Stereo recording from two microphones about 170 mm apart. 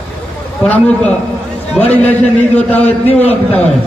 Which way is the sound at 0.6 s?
10° left (ahead or behind).